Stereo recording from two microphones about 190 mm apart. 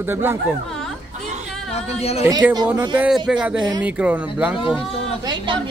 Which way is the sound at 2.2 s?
15° right (ahead or behind).